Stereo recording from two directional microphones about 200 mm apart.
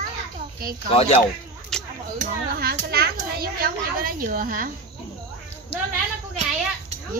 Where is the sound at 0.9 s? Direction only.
30° left (ahead or behind).